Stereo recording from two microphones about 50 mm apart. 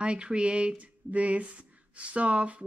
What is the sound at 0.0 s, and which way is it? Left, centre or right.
Speech, right.